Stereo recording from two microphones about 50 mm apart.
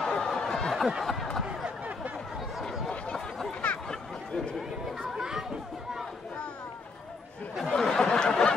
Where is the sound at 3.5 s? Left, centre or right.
Left.